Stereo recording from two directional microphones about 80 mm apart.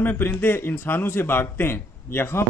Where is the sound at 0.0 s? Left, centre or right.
Left.